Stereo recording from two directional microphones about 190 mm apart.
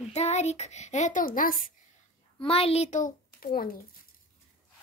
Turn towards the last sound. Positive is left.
turn(degrees=50)  # may be behind; listen again after turning